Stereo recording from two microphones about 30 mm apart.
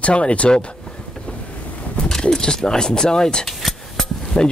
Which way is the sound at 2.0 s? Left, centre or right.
Centre.